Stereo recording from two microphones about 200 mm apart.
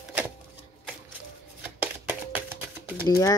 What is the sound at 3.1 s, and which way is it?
Speech, 15° left (ahead or behind).